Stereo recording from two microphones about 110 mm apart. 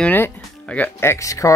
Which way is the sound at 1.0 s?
25° left (ahead or behind).